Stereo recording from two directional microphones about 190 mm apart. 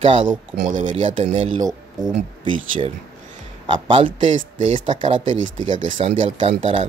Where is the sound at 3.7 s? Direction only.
25° right (ahead or behind).